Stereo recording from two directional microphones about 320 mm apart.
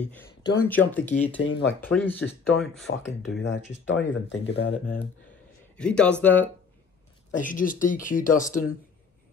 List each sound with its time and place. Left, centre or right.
0.1 s speech: centre
1.3 s speech: left
1.8 s speech: centre
2.9 s speech: left
5.8 s speech: centre
7.3 s speech: left